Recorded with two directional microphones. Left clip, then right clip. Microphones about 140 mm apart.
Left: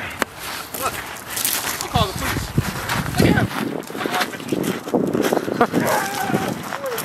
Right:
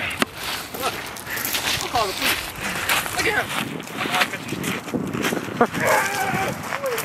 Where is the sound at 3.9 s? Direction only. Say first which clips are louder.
Right 2 dB; centre (ahead or behind).